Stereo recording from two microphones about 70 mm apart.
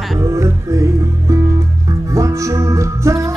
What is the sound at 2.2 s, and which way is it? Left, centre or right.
Music, right.